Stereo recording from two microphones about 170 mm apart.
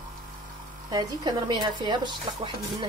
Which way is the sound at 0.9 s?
25° right (ahead or behind).